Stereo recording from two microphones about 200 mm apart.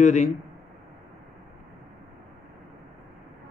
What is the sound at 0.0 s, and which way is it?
Speech, 35° left (ahead or behind).